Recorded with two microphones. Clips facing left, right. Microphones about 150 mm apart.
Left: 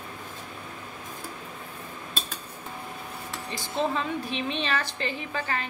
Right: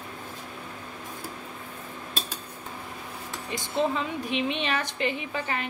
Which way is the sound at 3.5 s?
15° right (ahead or behind).